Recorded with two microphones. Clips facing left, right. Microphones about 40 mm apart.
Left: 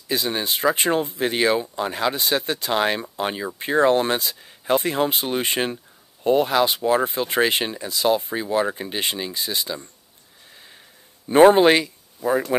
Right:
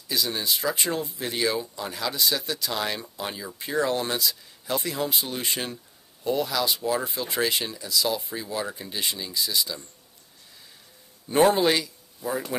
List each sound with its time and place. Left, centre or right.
0.1 s speech: left
11.2 s speech: left
12.2 s speech: centre